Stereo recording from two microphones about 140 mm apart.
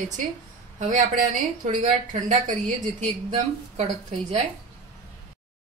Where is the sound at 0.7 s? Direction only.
65° right (ahead or behind).